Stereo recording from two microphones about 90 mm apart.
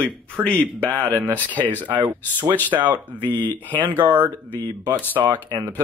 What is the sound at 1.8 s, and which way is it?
Speech, 60° right (ahead or behind).